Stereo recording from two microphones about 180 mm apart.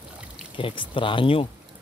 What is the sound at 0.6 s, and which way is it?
Speech, 30° left (ahead or behind).